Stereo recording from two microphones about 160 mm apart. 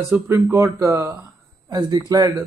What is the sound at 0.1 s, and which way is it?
Speech, 15° right (ahead or behind).